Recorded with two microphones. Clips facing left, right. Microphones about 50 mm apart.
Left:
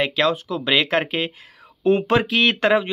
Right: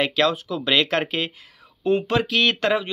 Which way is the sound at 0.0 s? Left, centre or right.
Centre.